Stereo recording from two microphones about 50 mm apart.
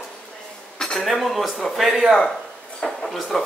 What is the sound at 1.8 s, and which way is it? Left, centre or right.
A man's voice, centre.